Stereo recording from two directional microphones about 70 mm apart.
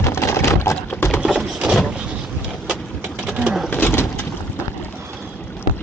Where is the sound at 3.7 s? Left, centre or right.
Left.